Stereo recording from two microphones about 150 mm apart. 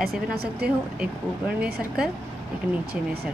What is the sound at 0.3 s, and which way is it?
Speech, 90° right.